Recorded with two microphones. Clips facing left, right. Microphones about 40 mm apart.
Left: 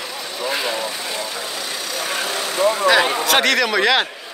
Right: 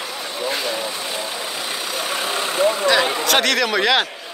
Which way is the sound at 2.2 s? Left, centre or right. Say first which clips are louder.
Even; right.